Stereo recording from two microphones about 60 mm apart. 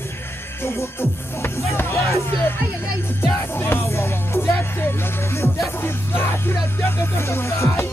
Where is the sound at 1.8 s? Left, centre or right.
Left.